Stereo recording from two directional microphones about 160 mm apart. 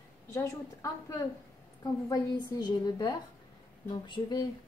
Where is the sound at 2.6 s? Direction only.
25° left (ahead or behind).